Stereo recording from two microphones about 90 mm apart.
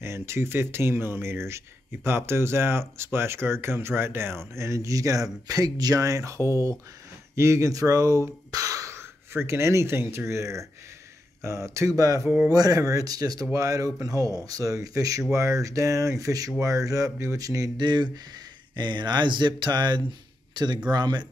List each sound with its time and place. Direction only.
0.0 s speech: 30° right (ahead or behind); by 21.3 s 50° right (ahead or behind)